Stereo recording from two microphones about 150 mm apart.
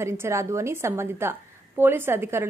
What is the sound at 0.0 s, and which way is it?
A woman's voice, 20° right (ahead or behind).